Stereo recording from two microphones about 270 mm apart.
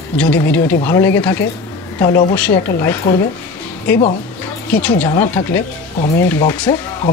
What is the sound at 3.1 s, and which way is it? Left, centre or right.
Speech, left.